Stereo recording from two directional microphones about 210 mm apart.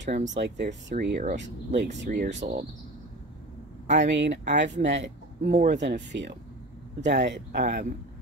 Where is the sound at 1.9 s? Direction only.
35° right (ahead or behind).